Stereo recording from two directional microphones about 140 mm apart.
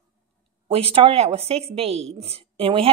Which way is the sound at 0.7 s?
45° right (ahead or behind).